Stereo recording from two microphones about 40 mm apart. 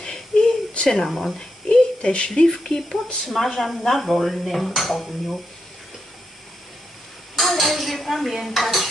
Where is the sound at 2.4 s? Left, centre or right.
Centre.